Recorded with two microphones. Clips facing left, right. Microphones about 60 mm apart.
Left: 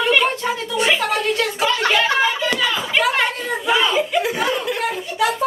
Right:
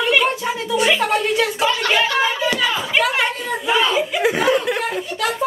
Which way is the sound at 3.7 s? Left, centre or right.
Centre.